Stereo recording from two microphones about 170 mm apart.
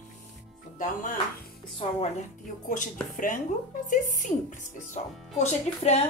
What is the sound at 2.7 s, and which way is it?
A woman's voice, 50° left (ahead or behind).